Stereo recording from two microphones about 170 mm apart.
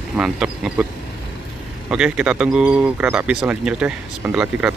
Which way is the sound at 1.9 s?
5° right (ahead or behind).